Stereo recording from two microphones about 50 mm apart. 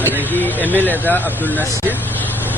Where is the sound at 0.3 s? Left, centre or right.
Left.